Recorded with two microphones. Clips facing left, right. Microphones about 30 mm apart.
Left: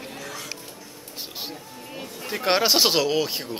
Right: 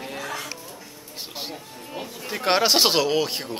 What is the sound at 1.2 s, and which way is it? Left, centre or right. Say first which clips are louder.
Music: right 1 dB; centre.